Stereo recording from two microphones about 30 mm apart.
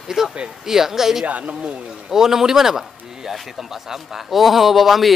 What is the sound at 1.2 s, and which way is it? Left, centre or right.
Speech, right.